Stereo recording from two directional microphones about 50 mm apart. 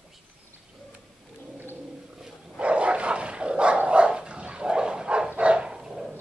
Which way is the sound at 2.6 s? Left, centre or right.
Right.